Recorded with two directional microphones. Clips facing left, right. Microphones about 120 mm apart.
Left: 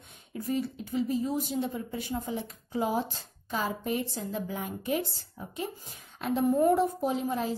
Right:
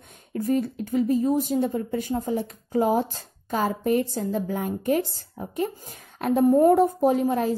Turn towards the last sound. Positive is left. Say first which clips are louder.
# right 8 dB
turn(degrees=-50)  # may be behind; listen again after turning